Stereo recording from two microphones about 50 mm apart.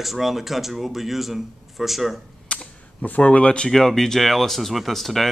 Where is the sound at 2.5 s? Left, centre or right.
Centre.